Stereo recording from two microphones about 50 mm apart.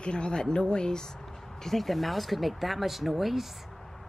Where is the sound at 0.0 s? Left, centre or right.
Centre.